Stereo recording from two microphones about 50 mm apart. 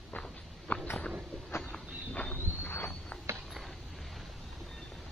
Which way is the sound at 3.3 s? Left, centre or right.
Right.